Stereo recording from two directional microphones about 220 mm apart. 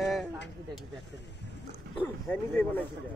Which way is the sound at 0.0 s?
Centre (ahead or behind).